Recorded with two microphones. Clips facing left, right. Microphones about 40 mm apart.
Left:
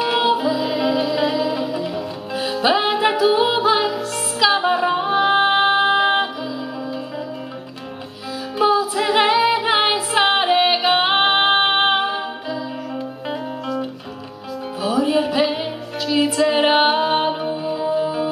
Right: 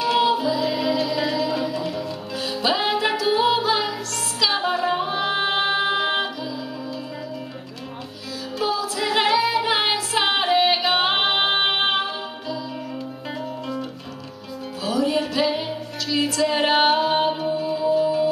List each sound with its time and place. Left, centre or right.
0.0 s music: centre
8.5 s music: left
14.8 s music: centre